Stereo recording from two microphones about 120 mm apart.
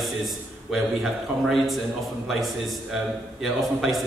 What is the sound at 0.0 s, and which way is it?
A man's voice, centre (ahead or behind).